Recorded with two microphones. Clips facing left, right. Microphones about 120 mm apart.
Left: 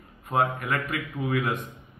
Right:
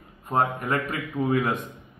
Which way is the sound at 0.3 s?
35° right (ahead or behind).